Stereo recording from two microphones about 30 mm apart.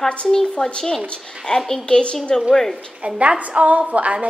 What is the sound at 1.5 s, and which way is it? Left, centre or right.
Speech, left.